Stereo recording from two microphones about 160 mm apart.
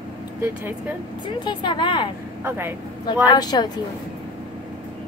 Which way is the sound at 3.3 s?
25° left (ahead or behind).